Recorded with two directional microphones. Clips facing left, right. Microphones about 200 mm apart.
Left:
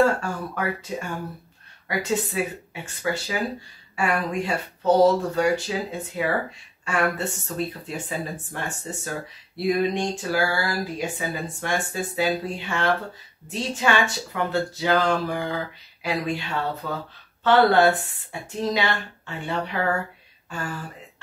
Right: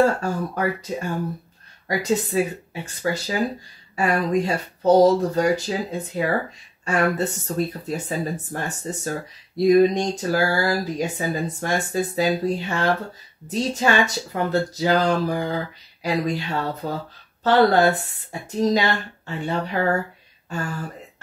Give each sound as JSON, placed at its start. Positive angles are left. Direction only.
{"t": 0.0, "sound": "speech", "side_deg": -40}